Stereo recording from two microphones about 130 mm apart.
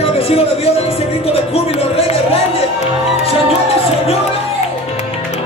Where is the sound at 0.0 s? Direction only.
50° left (ahead or behind).